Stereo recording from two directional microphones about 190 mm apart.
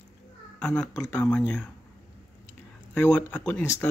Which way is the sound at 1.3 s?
5° left (ahead or behind).